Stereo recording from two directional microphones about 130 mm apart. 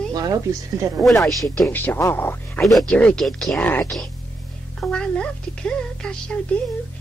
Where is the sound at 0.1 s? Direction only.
25° right (ahead or behind).